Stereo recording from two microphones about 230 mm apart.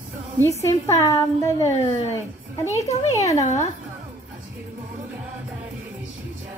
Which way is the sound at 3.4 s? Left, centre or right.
Left.